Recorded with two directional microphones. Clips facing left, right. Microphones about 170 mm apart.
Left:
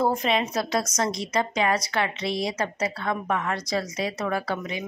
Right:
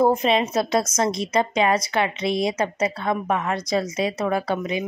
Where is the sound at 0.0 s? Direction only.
20° right (ahead or behind).